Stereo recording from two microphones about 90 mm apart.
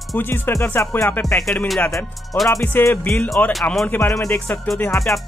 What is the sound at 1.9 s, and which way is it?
Speech, centre (ahead or behind).